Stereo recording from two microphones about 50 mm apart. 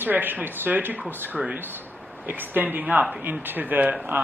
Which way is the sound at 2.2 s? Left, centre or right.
Right.